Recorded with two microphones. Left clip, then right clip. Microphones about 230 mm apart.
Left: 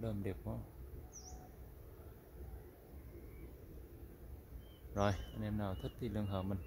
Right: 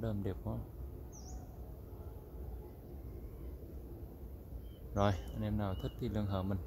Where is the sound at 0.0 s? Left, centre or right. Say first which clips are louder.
Right 3 dB; centre.